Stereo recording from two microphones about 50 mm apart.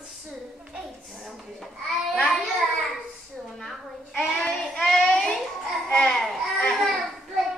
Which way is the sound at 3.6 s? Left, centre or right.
Centre.